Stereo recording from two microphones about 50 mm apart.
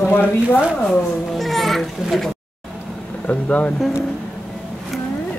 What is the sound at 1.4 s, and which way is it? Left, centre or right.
Speech, centre.